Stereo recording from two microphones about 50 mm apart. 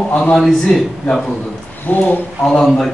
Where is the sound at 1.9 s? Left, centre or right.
Left.